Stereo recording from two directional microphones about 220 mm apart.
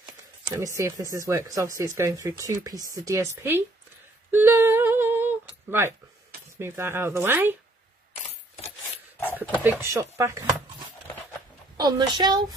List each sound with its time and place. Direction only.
0.0 s speech: 15° right (ahead or behind)
4.3 s humming: 10° right (ahead or behind)
6.6 s speech: 10° right (ahead or behind)
8.5 s keys jangling: 30° left (ahead or behind)
9.6 s speech: 10° right (ahead or behind)
11.7 s speech: 15° right (ahead or behind)